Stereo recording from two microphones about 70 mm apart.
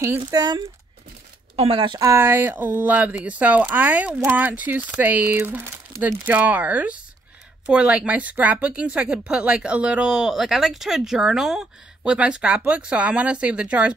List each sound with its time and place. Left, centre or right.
0.3 s speech: right
2.1 s speech: right; by 13.9 s centre